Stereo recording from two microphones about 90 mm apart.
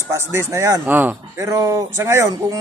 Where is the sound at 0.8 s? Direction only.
20° right (ahead or behind).